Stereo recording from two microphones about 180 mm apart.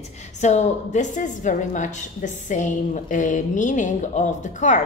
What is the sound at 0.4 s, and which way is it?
A woman's voice, 40° left (ahead or behind).